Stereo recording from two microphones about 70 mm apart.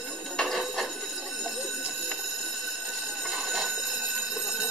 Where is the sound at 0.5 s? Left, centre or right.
Centre.